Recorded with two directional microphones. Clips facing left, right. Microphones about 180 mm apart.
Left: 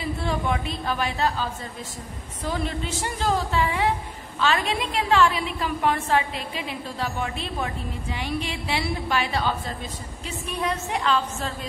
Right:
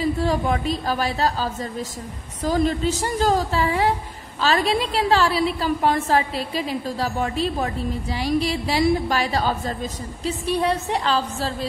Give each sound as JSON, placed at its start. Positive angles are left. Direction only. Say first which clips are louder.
{"t": 0.0, "sound": "a woman's voice", "louder": "right 6 dB", "side_deg": -40}